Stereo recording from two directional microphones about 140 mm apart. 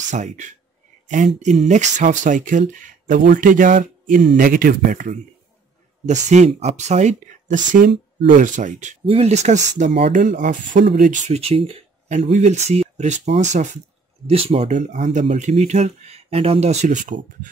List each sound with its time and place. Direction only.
0.1 s speech: 60° right (ahead or behind); by 5.1 s 80° right
6.0 s speech: 55° right (ahead or behind)
9.0 s speech: 45° right (ahead or behind)
12.1 s speech: 60° right (ahead or behind)
14.2 s speech: 45° right (ahead or behind)
14.7 s speech: 60° right (ahead or behind)